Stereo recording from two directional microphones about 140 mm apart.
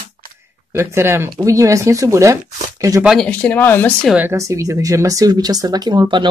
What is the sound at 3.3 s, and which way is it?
Speech, 10° left (ahead or behind).